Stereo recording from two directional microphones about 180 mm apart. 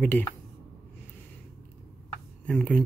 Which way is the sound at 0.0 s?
10° left (ahead or behind).